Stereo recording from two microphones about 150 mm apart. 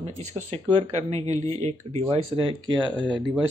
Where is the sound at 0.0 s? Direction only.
50° right (ahead or behind).